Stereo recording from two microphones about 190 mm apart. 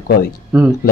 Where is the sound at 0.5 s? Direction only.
5° right (ahead or behind).